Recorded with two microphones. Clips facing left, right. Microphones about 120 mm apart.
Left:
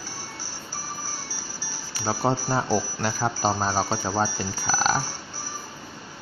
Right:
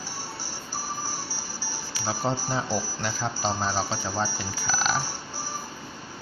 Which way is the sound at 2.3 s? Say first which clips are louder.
Left 5 dB; 60° left (ahead or behind).